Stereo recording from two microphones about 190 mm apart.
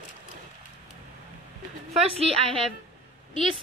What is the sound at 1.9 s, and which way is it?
Speech, 30° right (ahead or behind).